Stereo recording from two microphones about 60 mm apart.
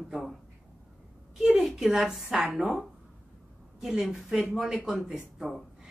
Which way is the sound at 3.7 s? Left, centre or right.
Centre.